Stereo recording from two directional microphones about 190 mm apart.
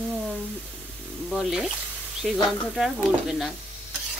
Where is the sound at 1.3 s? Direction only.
5° right (ahead or behind).